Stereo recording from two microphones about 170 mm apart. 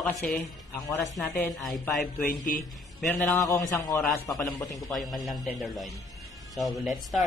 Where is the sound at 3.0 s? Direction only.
10° left (ahead or behind).